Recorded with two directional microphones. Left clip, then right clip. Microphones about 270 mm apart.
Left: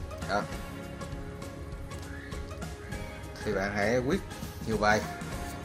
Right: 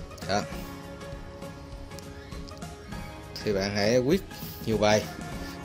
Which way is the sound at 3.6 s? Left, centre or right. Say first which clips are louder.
Right 2 dB; right.